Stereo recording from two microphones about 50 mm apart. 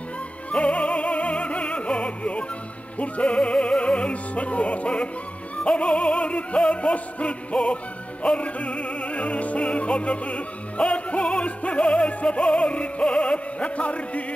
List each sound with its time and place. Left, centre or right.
0.5 s opera: left